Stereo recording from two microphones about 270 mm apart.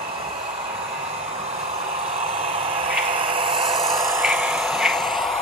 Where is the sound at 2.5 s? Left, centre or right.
Centre.